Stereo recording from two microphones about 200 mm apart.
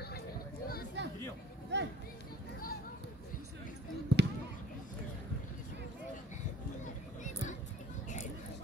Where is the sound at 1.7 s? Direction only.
60° right (ahead or behind).